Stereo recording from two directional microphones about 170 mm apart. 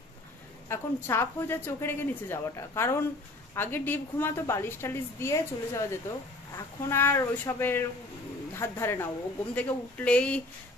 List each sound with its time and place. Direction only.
0.7 s a woman's voice: 15° left (ahead or behind)